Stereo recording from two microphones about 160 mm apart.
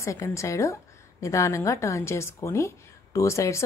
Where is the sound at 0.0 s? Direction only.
20° left (ahead or behind).